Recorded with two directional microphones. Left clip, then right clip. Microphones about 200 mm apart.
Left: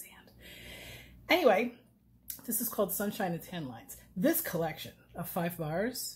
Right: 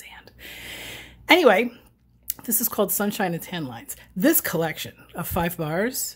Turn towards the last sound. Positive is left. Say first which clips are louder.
# right 9 dB
turn(degrees=-45)  # may be behind; listen again after turning